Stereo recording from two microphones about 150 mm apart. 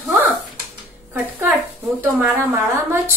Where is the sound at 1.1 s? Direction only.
10° right (ahead or behind).